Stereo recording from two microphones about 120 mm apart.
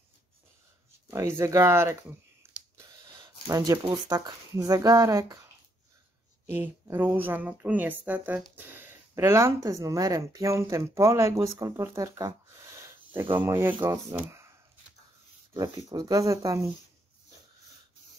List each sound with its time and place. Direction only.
1.1 s speech: 25° right (ahead or behind)
3.4 s speech: 25° right (ahead or behind)
15.9 s speech: 30° right (ahead or behind)